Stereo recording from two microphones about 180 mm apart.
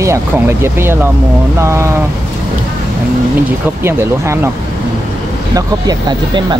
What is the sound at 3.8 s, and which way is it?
Speech, 15° right (ahead or behind).